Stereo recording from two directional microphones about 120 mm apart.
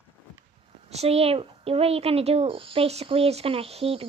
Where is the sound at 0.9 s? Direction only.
60° right (ahead or behind).